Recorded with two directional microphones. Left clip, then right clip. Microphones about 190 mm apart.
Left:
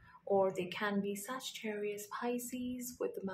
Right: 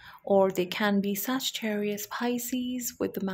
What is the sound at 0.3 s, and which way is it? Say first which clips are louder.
Speech: right 9 dB; 40° right (ahead or behind).